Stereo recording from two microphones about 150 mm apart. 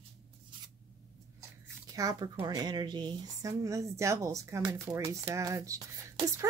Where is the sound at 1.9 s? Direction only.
25° right (ahead or behind).